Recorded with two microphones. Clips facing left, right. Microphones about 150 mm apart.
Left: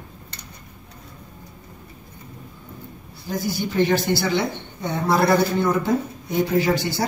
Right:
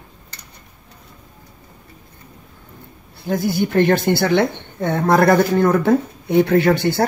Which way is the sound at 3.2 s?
60° right (ahead or behind).